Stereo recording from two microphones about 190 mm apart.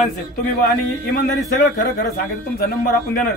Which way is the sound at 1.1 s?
50° left (ahead or behind).